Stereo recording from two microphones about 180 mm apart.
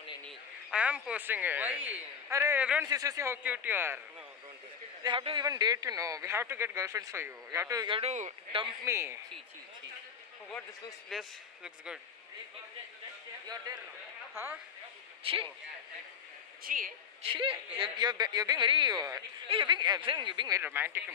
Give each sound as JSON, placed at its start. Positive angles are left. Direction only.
{"t": 0.2, "sound": "speech", "side_deg": -5}
{"t": 2.9, "sound": "speech", "side_deg": -20}
{"t": 5.0, "sound": "speech", "side_deg": -25}
{"t": 8.8, "sound": "speech", "side_deg": -15}
{"t": 11.1, "sound": "speech", "side_deg": 0}
{"t": 14.3, "sound": "speech", "side_deg": -15}
{"t": 16.6, "sound": "speech", "side_deg": -50}
{"t": 17.2, "sound": "speech", "side_deg": -30}
{"t": 20.6, "sound": "speech", "side_deg": -10}